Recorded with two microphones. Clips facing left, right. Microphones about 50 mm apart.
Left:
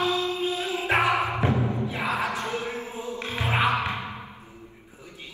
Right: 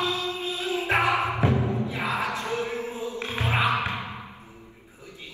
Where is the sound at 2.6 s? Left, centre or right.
Left.